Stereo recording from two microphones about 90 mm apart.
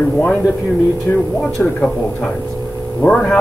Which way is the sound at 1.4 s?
10° left (ahead or behind).